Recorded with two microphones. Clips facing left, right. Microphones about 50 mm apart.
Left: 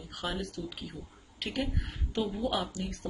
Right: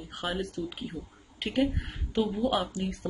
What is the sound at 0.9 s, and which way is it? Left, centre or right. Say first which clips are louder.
A woman's voice: right 5 dB; centre.